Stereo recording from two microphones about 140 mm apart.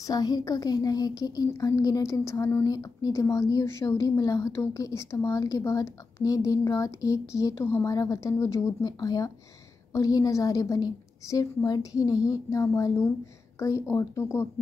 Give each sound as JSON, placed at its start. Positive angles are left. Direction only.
{"t": 0.0, "sound": "speech", "side_deg": 30}